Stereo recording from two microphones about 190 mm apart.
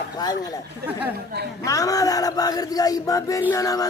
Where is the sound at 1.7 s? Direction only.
20° left (ahead or behind).